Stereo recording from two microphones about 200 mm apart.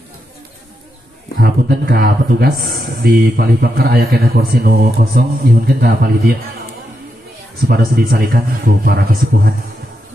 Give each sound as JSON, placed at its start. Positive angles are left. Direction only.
{"t": 1.4, "sound": "speech", "side_deg": -45}
{"t": 7.6, "sound": "speech", "side_deg": -50}